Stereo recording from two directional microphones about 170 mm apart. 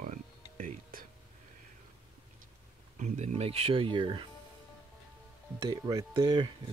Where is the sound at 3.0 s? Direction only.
40° right (ahead or behind).